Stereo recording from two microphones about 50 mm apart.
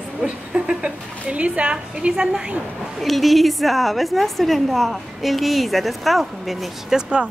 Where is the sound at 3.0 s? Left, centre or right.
Centre.